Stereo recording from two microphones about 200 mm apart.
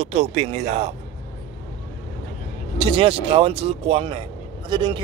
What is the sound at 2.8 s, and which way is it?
Speech, 25° right (ahead or behind).